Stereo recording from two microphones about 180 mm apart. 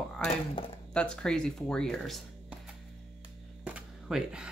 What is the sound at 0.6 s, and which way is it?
Speech, 30° left (ahead or behind).